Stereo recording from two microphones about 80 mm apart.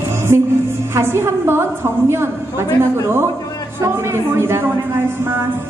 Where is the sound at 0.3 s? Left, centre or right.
Right.